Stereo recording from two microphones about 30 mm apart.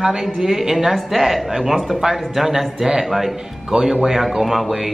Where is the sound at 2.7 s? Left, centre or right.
Centre.